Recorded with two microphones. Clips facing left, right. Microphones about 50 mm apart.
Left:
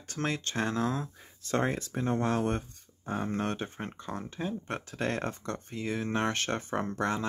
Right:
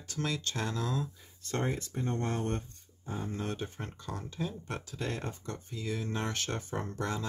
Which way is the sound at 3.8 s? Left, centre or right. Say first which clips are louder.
Left 3 dB; left.